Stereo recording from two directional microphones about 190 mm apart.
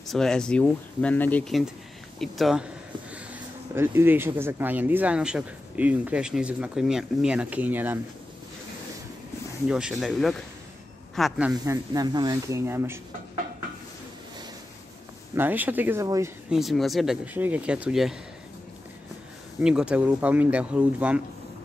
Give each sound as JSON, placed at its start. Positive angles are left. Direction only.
{"t": 0.0, "sound": "speech", "side_deg": 0}
{"t": 9.7, "sound": "speech", "side_deg": -5}
{"t": 11.5, "sound": "speech", "side_deg": -20}
{"t": 15.3, "sound": "speech", "side_deg": -10}
{"t": 16.4, "sound": "speech", "side_deg": 0}
{"t": 19.6, "sound": "speech", "side_deg": -5}